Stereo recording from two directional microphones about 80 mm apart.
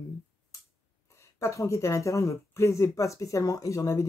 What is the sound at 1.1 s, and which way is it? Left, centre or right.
Speech, left.